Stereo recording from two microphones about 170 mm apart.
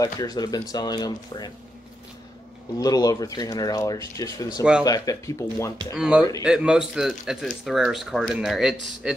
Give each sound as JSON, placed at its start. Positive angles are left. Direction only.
{"t": 0.0, "sound": "speech", "side_deg": 20}
{"t": 2.8, "sound": "speech", "side_deg": 20}
{"t": 5.9, "sound": "speech", "side_deg": -5}